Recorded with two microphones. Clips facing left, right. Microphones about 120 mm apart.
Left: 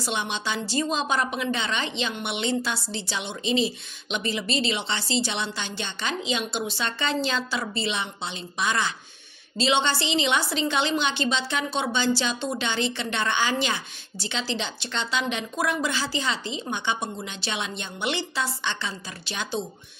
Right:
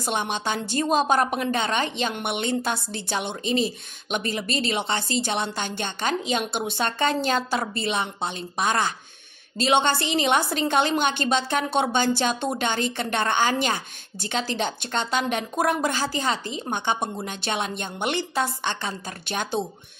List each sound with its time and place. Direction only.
0.0 s a woman's voice: 50° right (ahead or behind)